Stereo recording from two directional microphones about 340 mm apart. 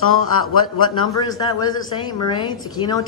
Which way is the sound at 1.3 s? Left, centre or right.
Centre.